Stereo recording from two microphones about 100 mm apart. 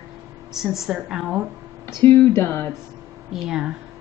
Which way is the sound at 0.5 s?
5° right (ahead or behind).